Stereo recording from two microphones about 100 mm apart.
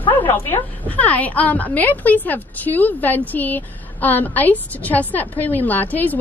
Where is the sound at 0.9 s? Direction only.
15° left (ahead or behind).